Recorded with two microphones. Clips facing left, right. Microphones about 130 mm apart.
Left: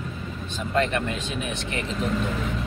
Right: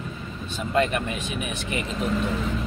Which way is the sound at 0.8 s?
15° right (ahead or behind).